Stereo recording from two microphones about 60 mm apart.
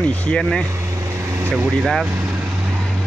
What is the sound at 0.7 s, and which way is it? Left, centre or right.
Vehicle, right.